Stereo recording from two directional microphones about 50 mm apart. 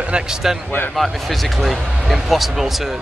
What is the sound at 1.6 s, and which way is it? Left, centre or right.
Speech, centre.